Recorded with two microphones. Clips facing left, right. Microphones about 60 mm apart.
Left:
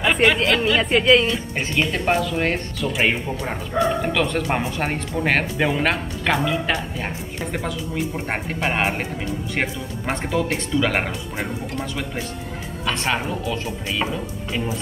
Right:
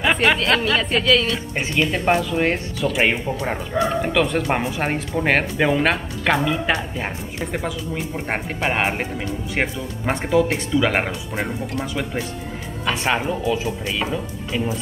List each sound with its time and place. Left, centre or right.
0.0 s speech: centre
0.7 s speech: left
1.8 s speech: centre